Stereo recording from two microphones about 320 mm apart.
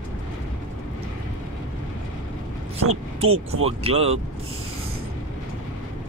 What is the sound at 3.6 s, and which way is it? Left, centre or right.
Speech, centre.